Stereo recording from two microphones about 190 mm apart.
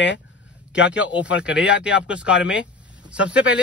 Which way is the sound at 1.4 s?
5° right (ahead or behind).